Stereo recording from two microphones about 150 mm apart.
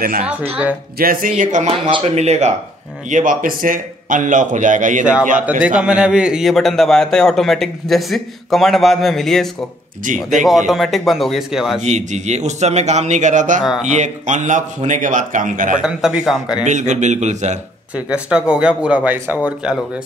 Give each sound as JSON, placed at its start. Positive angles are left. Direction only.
{"t": 0.2, "sound": "speech", "side_deg": -10}
{"t": 0.9, "sound": "a man's voice", "side_deg": -75}
{"t": 1.7, "sound": "speech", "side_deg": -35}
{"t": 2.0, "sound": "a man's voice", "side_deg": -50}
{"t": 3.1, "sound": "a man's voice", "side_deg": -60}
{"t": 5.8, "sound": "a man's voice", "side_deg": -5}
{"t": 10.0, "sound": "a man's voice", "side_deg": -60}
{"t": 10.7, "sound": "a man's voice", "side_deg": 0}
{"t": 11.8, "sound": "a man's voice", "side_deg": -50}
{"t": 15.8, "sound": "a man's voice", "side_deg": -5}
{"t": 16.6, "sound": "a man's voice", "side_deg": -55}
{"t": 17.9, "sound": "speech", "side_deg": -5}